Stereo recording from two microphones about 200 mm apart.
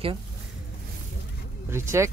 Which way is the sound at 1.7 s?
15° right (ahead or behind).